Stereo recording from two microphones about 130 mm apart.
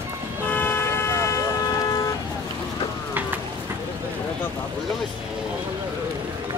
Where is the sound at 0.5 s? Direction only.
15° left (ahead or behind).